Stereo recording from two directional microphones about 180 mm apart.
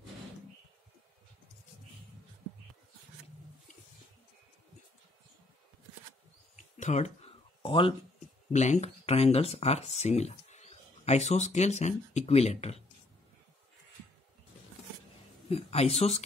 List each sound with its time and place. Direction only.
6.5 s a sound: 40° left (ahead or behind)
8.5 s speech: 40° left (ahead or behind)
15.5 s speech: 35° left (ahead or behind)